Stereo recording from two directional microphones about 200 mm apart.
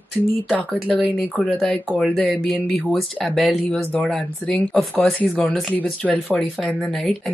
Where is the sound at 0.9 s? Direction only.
5° left (ahead or behind).